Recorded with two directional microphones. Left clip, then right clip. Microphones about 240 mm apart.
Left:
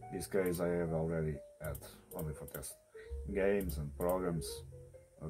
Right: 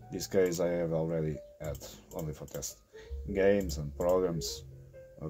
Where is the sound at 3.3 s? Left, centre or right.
Right.